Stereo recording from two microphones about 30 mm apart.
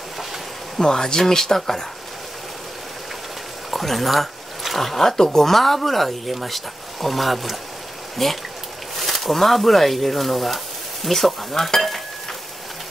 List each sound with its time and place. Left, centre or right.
0.8 s speech: centre
3.7 s speech: centre